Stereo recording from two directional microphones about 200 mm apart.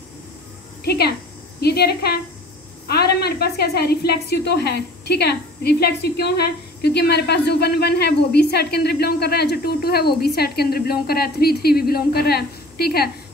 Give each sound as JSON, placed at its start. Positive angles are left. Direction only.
{"t": 0.8, "sound": "a woman's voice", "side_deg": 55}